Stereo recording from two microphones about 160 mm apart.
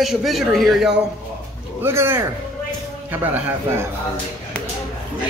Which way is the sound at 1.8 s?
15° right (ahead or behind).